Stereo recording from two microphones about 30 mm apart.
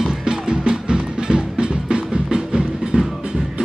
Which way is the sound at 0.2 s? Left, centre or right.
Right.